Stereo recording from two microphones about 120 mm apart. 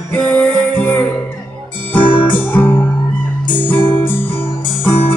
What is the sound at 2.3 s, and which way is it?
Music, 15° left (ahead or behind).